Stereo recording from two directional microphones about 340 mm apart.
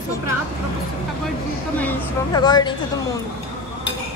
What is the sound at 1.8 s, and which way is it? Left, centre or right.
A woman's voice, centre.